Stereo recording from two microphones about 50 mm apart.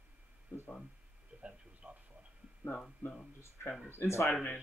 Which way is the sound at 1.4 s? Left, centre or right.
Right.